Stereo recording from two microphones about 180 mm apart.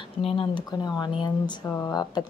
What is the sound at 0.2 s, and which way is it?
Speech, 30° left (ahead or behind).